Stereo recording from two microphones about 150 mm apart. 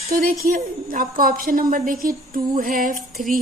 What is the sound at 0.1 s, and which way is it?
A woman's voice, 75° right (ahead or behind).